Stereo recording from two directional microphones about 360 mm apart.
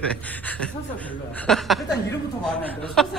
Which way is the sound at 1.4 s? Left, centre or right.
Centre.